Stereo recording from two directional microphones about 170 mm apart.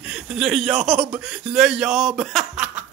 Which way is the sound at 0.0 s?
5° right (ahead or behind).